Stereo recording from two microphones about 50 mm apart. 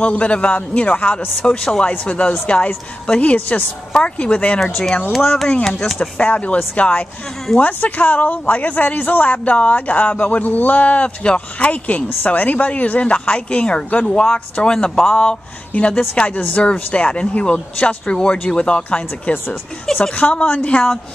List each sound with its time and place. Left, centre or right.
0.0 s a woman's voice: left
1.4 s a woman's voice: centre; by 3.6 s left
3.9 s a woman's voice: left
5.1 s speech: centre
5.9 s a woman's voice: left